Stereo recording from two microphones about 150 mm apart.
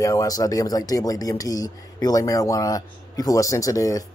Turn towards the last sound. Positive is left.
turn(degrees=20)  # may be behind; listen again after turning